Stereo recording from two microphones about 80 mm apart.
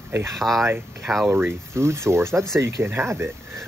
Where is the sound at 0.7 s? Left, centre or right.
Right.